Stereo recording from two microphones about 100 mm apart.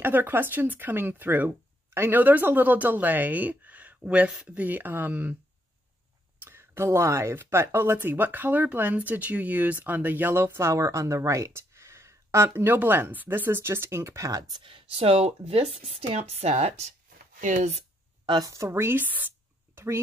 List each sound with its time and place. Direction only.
0.0 s speech: 20° right (ahead or behind)
6.4 s speech: 25° right (ahead or behind)
14.6 s speech: 70° right (ahead or behind); by 16.8 s 90° right
18.4 s speech: 30° right (ahead or behind)